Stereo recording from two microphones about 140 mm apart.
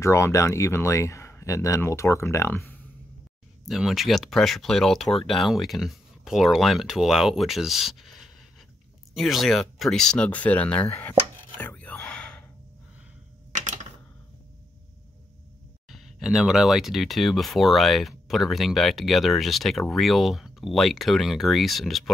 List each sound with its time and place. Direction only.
0.0 s speech: 20° left (ahead or behind)
3.6 s speech: centre (ahead or behind); by 11.1 s 15° left (ahead or behind)
11.5 s whispering: 10° left (ahead or behind)
13.5 s typing: 60° right (ahead or behind)
15.9 s speech: centre (ahead or behind)